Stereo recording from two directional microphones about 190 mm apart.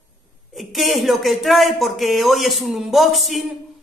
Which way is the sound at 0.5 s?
Centre (ahead or behind).